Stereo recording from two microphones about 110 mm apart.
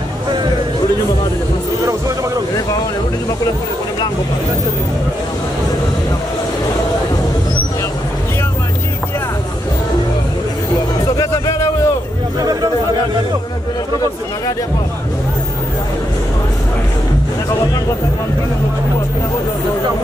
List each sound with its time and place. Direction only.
11.1 s music: 30° left (ahead or behind)